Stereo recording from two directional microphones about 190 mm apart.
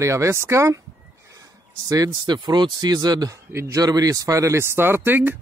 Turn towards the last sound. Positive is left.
turn(degrees=-10)  # may be behind; listen again after turning